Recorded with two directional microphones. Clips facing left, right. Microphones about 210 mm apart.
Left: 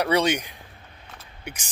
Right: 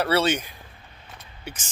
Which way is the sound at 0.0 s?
15° left (ahead or behind).